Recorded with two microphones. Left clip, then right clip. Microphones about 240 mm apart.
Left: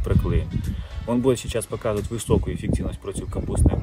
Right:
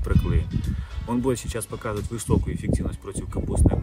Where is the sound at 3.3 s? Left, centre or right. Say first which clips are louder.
Right 3 dB; right.